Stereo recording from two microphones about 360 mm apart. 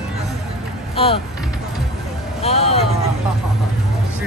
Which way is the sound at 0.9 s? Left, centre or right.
Centre.